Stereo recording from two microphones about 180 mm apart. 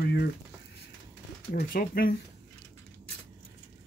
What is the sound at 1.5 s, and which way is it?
Speech, 55° left (ahead or behind).